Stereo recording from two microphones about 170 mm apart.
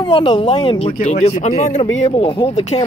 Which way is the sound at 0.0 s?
30° left (ahead or behind).